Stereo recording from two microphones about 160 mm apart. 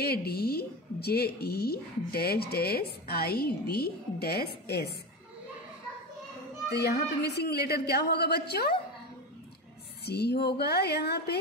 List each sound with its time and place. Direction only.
0.0 s a woman's voice: 75° left (ahead or behind)
6.7 s a woman's voice: 90° left
10.0 s a woman's voice: 90° left